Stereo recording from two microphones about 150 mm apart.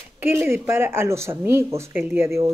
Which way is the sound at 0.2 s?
15° right (ahead or behind).